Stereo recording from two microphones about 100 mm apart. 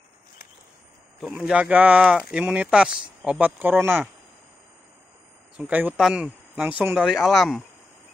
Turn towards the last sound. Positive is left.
turn(degrees=0)  # may be behind; listen again after turning